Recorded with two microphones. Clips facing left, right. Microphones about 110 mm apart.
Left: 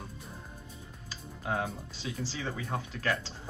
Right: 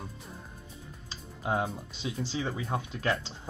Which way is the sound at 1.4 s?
20° right (ahead or behind).